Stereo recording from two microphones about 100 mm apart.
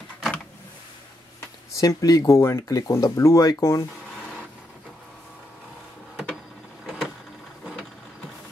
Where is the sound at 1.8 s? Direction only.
35° left (ahead or behind).